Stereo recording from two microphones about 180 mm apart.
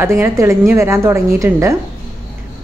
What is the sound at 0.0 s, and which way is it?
A woman's voice, 15° right (ahead or behind).